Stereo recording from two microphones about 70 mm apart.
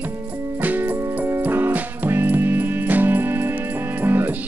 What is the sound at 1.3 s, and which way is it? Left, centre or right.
Music, right.